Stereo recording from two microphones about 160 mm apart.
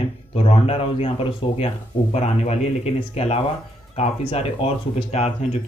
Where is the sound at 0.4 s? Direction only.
35° left (ahead or behind).